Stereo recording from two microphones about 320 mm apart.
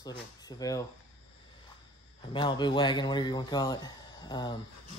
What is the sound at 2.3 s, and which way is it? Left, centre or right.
Speech, centre.